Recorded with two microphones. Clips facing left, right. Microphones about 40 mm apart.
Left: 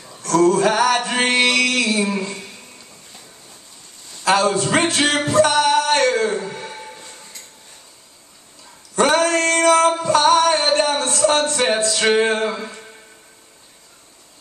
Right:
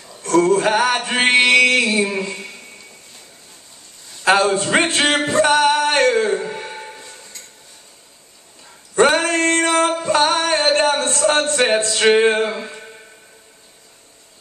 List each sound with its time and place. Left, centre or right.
0.2 s male singing: right
4.2 s a man's voice: right
4.7 s music: right
8.9 s male singing: right